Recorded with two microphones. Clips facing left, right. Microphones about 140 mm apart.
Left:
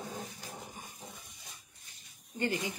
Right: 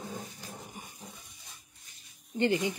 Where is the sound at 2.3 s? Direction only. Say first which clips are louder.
Right 6 dB; 20° right (ahead or behind).